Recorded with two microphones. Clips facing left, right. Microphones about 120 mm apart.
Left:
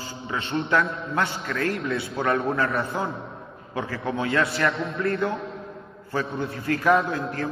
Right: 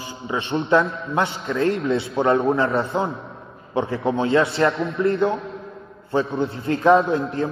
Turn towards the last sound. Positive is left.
turn(degrees=-25)  # may be behind; listen again after turning